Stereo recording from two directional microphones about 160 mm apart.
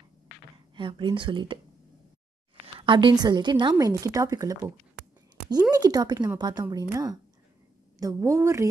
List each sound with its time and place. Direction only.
0.7 s speech: 30° right (ahead or behind)
2.6 s a woman's voice: 30° right (ahead or behind)